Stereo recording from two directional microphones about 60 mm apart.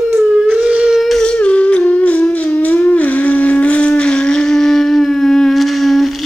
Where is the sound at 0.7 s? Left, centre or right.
Right.